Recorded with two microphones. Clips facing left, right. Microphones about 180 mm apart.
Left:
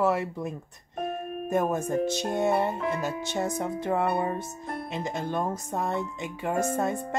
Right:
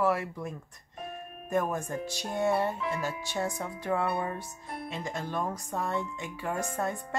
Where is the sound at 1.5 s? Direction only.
25° left (ahead or behind).